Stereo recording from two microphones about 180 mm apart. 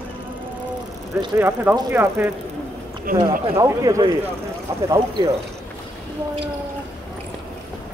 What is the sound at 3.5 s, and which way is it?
Speech, 15° right (ahead or behind).